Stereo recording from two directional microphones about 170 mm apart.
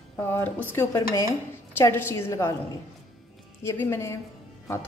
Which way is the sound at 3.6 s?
15° left (ahead or behind).